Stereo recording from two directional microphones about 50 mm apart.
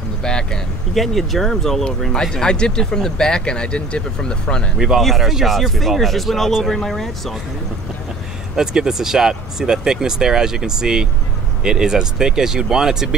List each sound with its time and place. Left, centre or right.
0.2 s speech: centre
0.9 s speech: centre
4.7 s speech: centre
8.5 s speech: centre